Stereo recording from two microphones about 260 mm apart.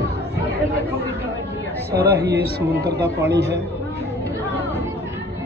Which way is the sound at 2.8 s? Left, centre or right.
Centre.